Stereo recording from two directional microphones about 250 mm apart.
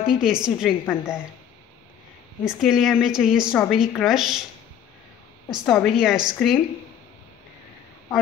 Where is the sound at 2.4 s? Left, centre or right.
Centre.